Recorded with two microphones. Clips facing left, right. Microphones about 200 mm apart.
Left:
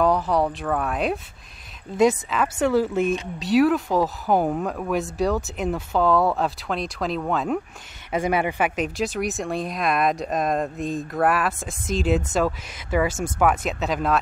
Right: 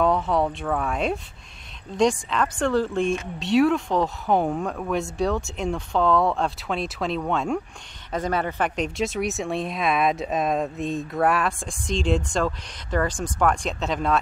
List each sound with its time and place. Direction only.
0.0 s speech: centre (ahead or behind)